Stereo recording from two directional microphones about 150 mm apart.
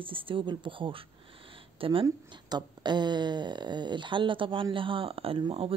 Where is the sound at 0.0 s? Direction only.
35° right (ahead or behind).